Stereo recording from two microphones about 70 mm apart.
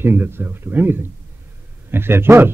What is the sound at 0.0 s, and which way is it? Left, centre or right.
Speech, right.